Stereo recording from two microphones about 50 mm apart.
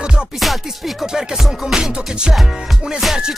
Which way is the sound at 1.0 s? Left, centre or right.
Centre.